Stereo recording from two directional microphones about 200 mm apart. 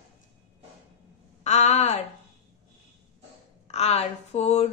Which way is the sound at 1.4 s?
35° left (ahead or behind).